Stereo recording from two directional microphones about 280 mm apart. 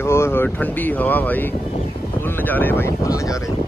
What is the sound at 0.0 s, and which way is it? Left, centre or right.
Speech, centre.